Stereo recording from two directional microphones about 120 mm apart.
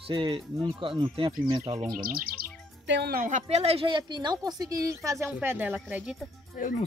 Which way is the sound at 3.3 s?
65° right (ahead or behind).